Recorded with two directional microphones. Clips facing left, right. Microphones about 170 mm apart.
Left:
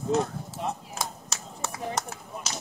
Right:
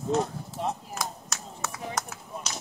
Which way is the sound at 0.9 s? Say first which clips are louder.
Even; 30° left (ahead or behind).